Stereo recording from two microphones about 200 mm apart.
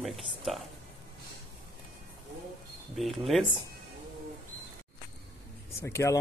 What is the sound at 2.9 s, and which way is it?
Speech, centre (ahead or behind).